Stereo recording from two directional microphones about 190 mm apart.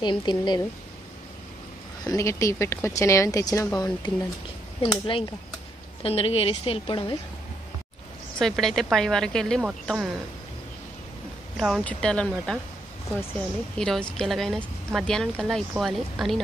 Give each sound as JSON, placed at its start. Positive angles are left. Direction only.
{"t": 0.0, "sound": "a woman's voice", "side_deg": 25}
{"t": 2.0, "sound": "a woman's voice", "side_deg": 15}
{"t": 8.4, "sound": "speech", "side_deg": 0}
{"t": 11.5, "sound": "speech", "side_deg": 0}